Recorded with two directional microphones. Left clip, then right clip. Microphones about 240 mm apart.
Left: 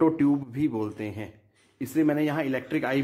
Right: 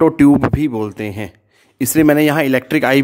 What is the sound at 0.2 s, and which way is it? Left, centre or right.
Speech, right.